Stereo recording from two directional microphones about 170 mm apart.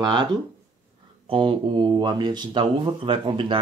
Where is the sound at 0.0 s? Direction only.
25° right (ahead or behind).